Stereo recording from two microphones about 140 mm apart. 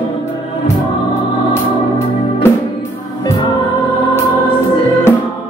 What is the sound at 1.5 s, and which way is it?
Music, 15° left (ahead or behind).